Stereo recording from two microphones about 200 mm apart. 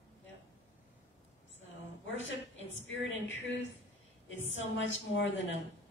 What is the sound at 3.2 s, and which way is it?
A woman's voice, 65° left (ahead or behind).